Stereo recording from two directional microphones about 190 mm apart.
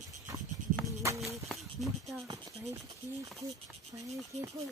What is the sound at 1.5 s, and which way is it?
Speech, centre (ahead or behind).